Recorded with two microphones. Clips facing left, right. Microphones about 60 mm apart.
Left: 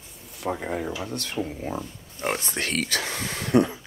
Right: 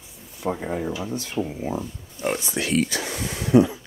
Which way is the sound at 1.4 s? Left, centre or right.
Right.